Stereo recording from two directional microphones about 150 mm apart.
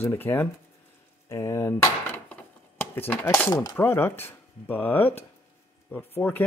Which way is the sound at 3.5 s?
25° left (ahead or behind).